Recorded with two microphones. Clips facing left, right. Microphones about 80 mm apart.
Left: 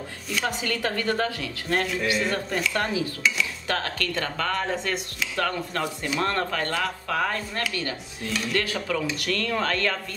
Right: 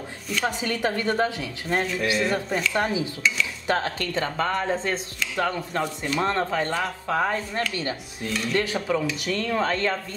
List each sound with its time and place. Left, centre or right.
0.6 s speech: right